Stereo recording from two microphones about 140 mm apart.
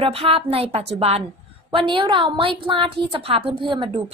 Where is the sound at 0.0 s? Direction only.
40° right (ahead or behind).